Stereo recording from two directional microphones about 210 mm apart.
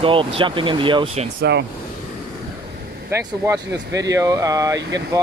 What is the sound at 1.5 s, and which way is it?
Speech, 55° right (ahead or behind).